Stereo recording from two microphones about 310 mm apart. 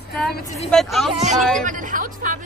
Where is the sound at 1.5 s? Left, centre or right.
Right.